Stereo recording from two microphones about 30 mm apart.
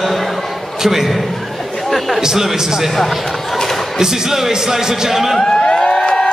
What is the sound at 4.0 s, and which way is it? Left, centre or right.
Speech, centre.